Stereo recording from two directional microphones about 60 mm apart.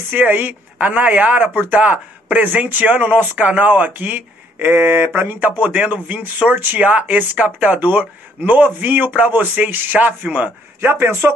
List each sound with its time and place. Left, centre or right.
0.1 s speech: right
10.8 s speech: right